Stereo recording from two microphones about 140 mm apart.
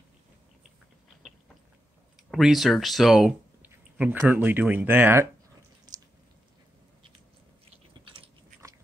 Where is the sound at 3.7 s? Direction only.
15° right (ahead or behind).